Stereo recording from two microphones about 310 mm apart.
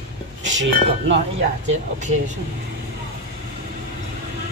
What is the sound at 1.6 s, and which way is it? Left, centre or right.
Speech, right.